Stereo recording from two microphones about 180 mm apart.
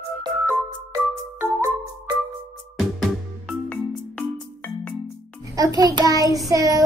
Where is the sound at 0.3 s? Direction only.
Centre (ahead or behind).